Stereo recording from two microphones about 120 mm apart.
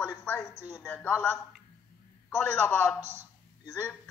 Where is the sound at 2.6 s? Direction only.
20° left (ahead or behind).